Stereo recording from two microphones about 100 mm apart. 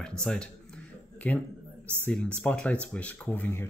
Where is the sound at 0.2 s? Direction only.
10° left (ahead or behind).